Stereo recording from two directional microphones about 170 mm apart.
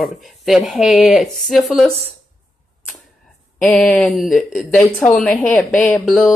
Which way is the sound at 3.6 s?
5° left (ahead or behind).